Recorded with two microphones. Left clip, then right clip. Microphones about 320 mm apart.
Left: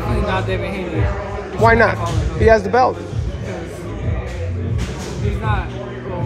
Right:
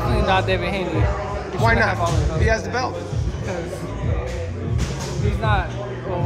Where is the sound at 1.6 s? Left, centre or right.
Centre.